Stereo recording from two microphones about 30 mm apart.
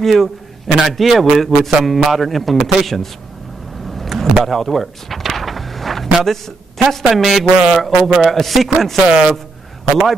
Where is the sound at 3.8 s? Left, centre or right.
Centre.